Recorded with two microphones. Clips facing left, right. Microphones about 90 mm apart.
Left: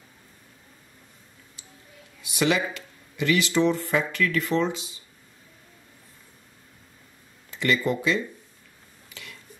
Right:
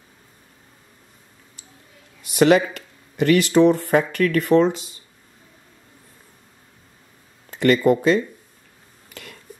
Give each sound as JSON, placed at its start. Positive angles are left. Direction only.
{"t": 2.2, "sound": "speech", "side_deg": -50}
{"t": 7.5, "sound": "speech", "side_deg": -50}
{"t": 9.1, "sound": "a sound", "side_deg": -50}